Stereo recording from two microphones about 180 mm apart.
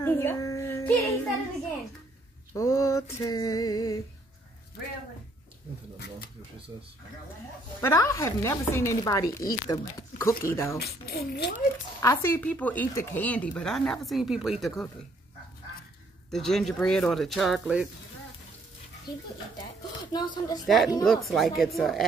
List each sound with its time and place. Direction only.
0.0 s a child's voice: 10° left (ahead or behind)
2.5 s speech: 15° left (ahead or behind)
7.8 s speech: 15° left (ahead or behind)
10.8 s speech: 60° left (ahead or behind)
12.0 s speech: 15° left (ahead or behind); by 14.9 s centre (ahead or behind)
16.3 s speech: centre (ahead or behind)
19.1 s speech: 60° left (ahead or behind)
20.1 s speech: 20° left (ahead or behind)
20.6 s speech: centre (ahead or behind)